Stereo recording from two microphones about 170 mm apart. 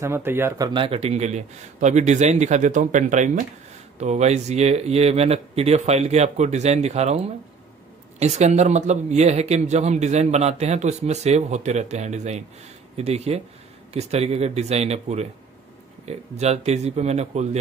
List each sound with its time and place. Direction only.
0.0 s speech: 15° right (ahead or behind); by 7.2 s 40° right (ahead or behind)
8.2 s speech: 40° right (ahead or behind)